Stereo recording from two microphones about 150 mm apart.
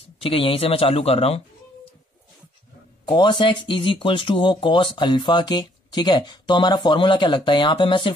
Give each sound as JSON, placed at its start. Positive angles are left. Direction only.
{"t": 0.2, "sound": "speech", "side_deg": 40}
{"t": 3.1, "sound": "speech", "side_deg": 30}